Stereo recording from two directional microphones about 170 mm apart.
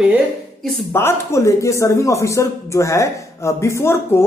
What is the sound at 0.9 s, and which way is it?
Speech, 15° left (ahead or behind).